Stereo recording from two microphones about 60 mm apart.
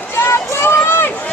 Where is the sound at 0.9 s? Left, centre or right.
Left.